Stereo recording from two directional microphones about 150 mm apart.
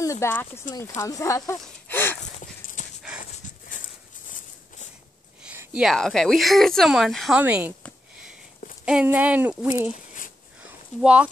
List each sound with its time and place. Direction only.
0.0 s speech: 20° left (ahead or behind)
2.4 s dog: 60° left (ahead or behind)
5.4 s speech: 10° right (ahead or behind)
7.3 s speech: 10° right (ahead or behind)
8.8 s speech: 10° right (ahead or behind)
10.6 s a sound: 10° right (ahead or behind)